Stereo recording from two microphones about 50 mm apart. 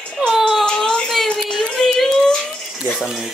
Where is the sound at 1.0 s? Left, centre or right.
Centre.